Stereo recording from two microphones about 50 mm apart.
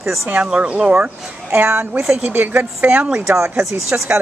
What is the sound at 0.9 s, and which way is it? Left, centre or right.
Speech, right.